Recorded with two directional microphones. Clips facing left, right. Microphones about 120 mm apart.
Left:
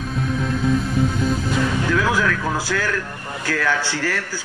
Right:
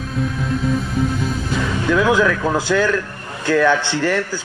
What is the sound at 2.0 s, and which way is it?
Speech, 20° right (ahead or behind).